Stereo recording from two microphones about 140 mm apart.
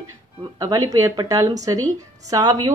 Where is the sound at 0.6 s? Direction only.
25° right (ahead or behind).